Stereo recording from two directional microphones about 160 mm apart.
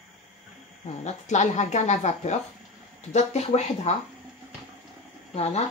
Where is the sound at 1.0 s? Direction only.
45° left (ahead or behind).